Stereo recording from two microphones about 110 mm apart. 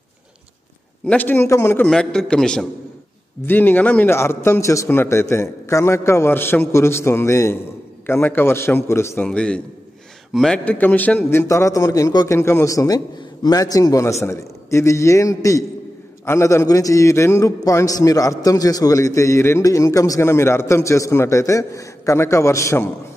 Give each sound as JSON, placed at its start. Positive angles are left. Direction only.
{"t": 1.0, "sound": "a man's voice", "side_deg": 15}
{"t": 1.9, "sound": "a man's voice", "side_deg": 5}
{"t": 3.4, "sound": "a man's voice", "side_deg": 20}
{"t": 9.2, "sound": "a man's voice", "side_deg": 10}
{"t": 12.3, "sound": "a man's voice", "side_deg": 25}